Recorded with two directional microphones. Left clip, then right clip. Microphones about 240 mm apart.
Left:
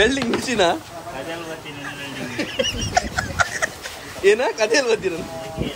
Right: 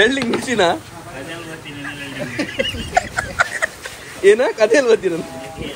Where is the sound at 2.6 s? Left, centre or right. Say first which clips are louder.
Right 2 dB; centre.